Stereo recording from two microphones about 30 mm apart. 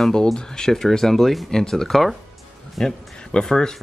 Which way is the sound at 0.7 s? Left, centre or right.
Centre.